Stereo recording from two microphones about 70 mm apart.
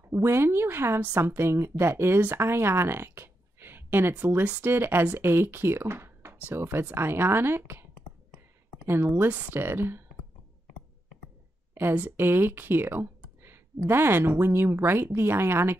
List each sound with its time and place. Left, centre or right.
0.1 s speech: right
8.8 s speech: right
11.7 s speech: right